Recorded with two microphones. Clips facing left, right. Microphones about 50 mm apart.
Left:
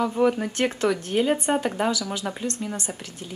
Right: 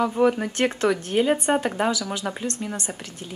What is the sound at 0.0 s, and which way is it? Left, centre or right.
Speech, centre.